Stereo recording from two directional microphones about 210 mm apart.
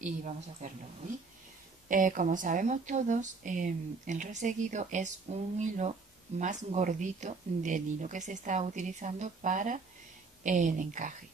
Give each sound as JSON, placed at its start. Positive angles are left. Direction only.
{"t": 0.0, "sound": "speech", "side_deg": -35}
{"t": 1.9, "sound": "speech", "side_deg": -40}